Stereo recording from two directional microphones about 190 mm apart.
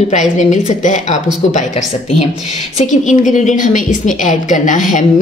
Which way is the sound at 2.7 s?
40° left (ahead or behind).